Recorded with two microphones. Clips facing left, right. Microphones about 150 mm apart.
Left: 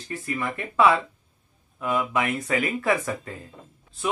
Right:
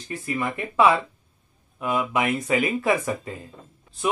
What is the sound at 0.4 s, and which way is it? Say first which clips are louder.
Speech: right 1 dB; 20° right (ahead or behind).